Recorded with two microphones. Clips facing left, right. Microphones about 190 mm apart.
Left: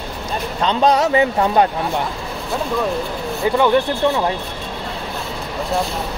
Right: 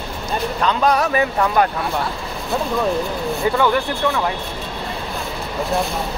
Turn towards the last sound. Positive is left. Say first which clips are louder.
# left 4 dB
turn(degrees=20)  # may be behind; listen again after turning